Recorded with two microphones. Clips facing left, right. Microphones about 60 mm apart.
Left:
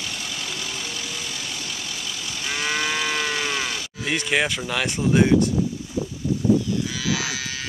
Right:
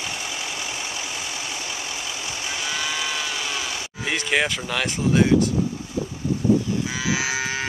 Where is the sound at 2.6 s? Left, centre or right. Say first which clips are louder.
Left 4 dB; left.